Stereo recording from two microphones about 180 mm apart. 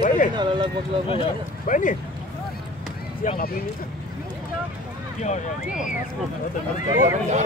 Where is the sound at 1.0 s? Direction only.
30° left (ahead or behind).